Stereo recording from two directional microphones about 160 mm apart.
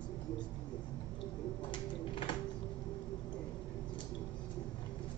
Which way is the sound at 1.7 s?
30° left (ahead or behind).